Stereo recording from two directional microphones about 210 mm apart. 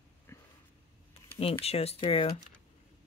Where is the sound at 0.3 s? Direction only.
10° left (ahead or behind).